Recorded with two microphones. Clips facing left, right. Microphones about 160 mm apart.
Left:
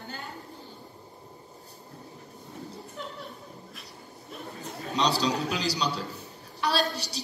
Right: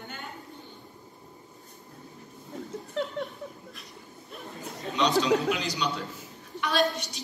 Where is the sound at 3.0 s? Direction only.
90° right.